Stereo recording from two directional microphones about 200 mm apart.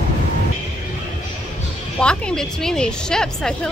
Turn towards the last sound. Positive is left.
turn(degrees=5)  # may be behind; listen again after turning